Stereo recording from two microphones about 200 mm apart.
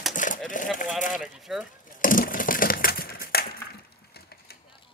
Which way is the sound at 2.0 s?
45° left (ahead or behind).